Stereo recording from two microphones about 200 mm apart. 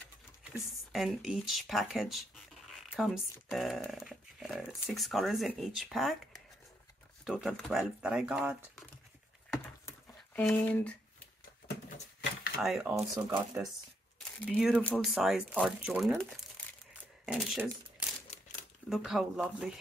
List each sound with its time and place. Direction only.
0.7 s speech: centre (ahead or behind)
9.8 s a sound: 10° left (ahead or behind)
12.5 s speech: centre (ahead or behind)
17.3 s speech: 5° right (ahead or behind)
18.3 s a sound: 40° left (ahead or behind)
18.9 s speech: centre (ahead or behind)